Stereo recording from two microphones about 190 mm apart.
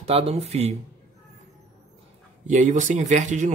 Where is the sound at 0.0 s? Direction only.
30° right (ahead or behind).